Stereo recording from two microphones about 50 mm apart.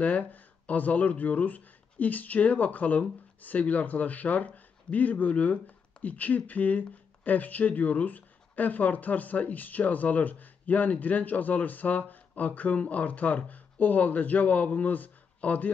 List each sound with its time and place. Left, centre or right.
0.0 s speech: left